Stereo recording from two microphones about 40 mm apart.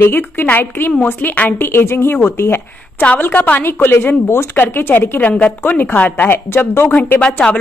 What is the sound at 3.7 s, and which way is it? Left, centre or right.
Speech, left.